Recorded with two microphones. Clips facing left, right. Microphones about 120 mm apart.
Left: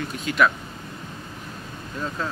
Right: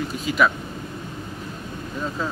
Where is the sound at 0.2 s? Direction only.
5° right (ahead or behind).